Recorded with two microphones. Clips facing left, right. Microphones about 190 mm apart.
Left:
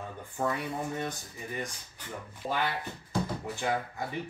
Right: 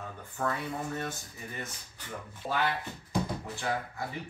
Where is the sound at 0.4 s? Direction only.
15° left (ahead or behind).